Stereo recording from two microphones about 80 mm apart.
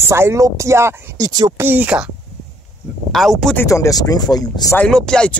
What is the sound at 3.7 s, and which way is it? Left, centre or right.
Speech, left.